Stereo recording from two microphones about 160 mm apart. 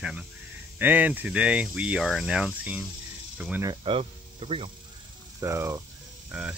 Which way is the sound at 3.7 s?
35° right (ahead or behind).